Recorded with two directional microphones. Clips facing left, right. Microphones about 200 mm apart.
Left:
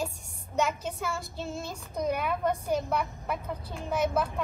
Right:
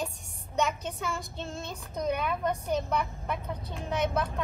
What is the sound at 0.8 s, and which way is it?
Speech, centre (ahead or behind).